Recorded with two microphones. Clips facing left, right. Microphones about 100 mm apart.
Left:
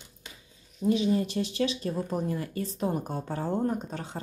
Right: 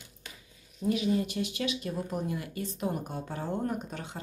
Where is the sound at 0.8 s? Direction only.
30° left (ahead or behind).